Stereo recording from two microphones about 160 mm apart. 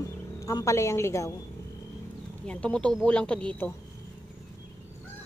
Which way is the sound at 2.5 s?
5° left (ahead or behind).